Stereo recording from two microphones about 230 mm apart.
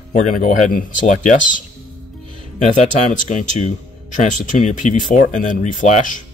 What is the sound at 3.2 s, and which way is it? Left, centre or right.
Speech, left.